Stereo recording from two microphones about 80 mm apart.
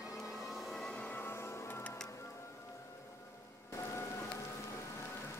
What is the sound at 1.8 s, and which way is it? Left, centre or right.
Music, centre.